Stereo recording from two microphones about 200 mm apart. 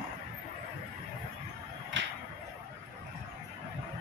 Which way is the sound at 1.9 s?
70° right (ahead or behind).